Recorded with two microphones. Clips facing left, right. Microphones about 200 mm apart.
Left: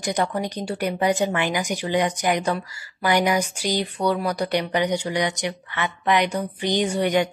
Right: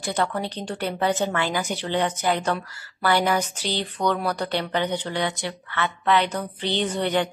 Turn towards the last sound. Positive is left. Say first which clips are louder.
# left 3 dB
turn(degrees=10)  # may be behind; listen again after turning